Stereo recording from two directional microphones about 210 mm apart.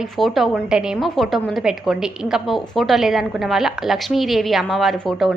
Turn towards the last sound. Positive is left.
turn(degrees=0)  # may be behind; listen again after turning